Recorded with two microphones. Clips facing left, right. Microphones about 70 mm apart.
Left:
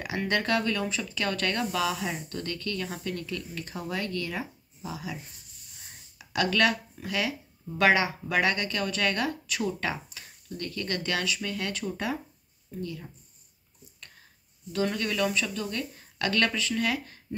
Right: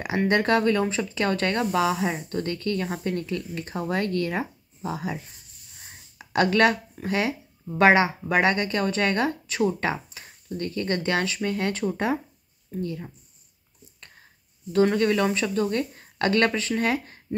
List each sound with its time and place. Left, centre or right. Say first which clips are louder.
0.0 s speech: right 6 dB; right
14.7 s speech: right 8 dB; right